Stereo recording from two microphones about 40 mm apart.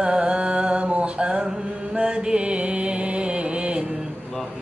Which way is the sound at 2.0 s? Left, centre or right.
Right.